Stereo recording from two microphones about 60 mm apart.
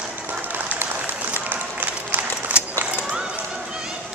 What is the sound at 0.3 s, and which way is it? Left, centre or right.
Applause, right.